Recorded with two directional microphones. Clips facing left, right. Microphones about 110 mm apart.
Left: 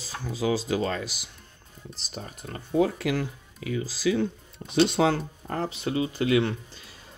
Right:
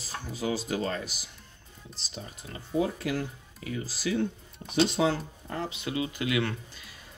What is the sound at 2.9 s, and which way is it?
Speech, 90° left.